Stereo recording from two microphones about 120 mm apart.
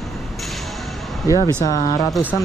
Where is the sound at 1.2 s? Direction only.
30° left (ahead or behind).